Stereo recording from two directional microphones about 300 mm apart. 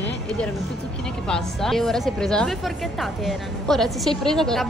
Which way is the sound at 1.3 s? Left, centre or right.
Centre.